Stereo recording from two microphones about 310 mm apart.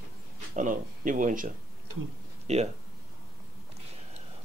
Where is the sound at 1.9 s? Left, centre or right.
Right.